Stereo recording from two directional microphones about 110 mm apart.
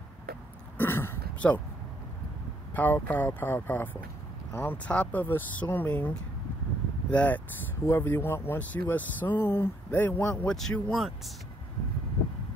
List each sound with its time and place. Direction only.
0.7 s throat clearing: 20° left (ahead or behind)
1.4 s speech: 10° left (ahead or behind)
2.7 s speech: 15° left (ahead or behind)
10.5 s speech: 5° left (ahead or behind)